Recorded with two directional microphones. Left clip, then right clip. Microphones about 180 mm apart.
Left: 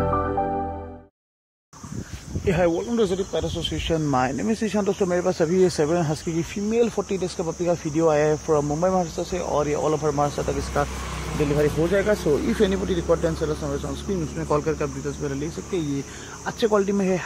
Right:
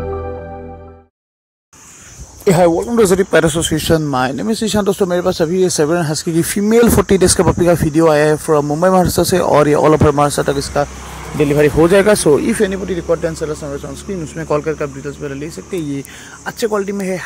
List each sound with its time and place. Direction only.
2.4 s speech: 40° right (ahead or behind)
3.0 s speech: 55° right (ahead or behind)
4.1 s speech: 30° right (ahead or behind)
6.3 s speech: 50° right (ahead or behind)
9.0 s speech: 55° right (ahead or behind)
10.8 s speech: 25° right (ahead or behind)
11.3 s speech: 40° right (ahead or behind)
12.5 s speech: 15° right (ahead or behind)